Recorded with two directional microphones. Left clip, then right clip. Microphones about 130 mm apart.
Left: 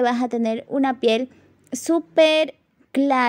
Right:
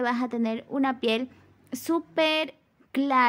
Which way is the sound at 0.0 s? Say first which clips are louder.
Left 7 dB; 35° left (ahead or behind).